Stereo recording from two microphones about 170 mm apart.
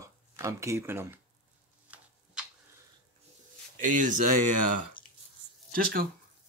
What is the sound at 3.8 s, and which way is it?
Speech, 50° right (ahead or behind).